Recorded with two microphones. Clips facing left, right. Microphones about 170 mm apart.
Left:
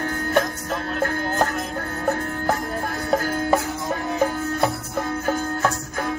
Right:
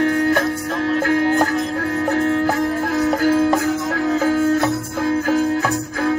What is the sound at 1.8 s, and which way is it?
Music, 90° right.